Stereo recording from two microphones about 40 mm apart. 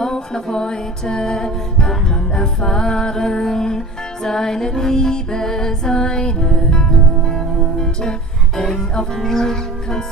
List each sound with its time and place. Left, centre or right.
0.0 s music: centre